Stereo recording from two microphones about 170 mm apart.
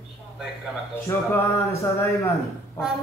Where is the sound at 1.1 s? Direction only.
15° left (ahead or behind).